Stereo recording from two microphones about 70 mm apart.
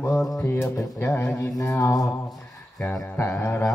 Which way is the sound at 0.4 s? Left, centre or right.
Left.